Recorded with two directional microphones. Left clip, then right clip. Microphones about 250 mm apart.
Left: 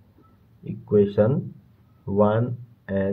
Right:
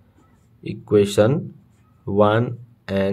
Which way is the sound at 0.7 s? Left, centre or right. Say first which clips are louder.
Right 3 dB; right.